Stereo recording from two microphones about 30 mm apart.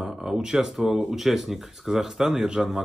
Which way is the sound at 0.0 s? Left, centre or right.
Right.